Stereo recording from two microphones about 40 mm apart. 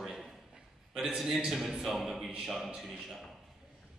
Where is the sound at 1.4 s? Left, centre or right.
Centre.